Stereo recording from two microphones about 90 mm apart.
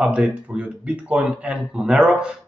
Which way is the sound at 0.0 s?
15° right (ahead or behind).